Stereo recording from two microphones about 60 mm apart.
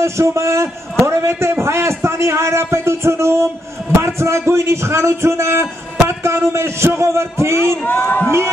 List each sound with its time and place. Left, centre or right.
0.0 s speech: right
7.8 s a man's voice: left